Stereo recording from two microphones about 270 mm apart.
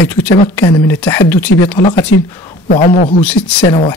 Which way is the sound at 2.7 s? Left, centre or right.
Left.